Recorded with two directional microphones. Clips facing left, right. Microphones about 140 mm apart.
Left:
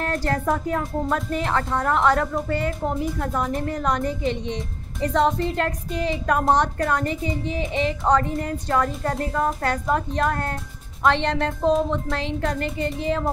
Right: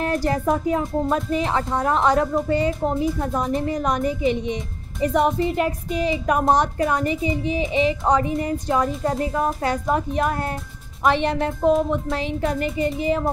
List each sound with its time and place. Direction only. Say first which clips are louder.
0.0 s speech: right 3 dB; 15° right (ahead or behind)